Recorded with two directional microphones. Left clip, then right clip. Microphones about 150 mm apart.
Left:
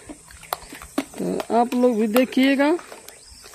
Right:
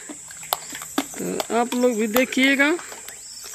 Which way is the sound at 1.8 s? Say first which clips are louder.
Left 1 dB; 30° left (ahead or behind).